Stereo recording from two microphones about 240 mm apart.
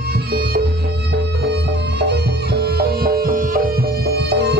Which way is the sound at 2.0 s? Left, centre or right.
Right.